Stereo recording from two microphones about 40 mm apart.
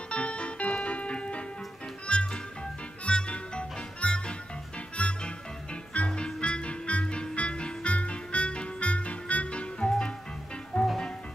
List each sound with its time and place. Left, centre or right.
0.1 s music: left
9.8 s music: centre
10.7 s music: left